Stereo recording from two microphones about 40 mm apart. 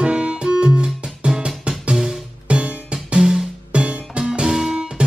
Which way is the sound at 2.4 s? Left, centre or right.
Right.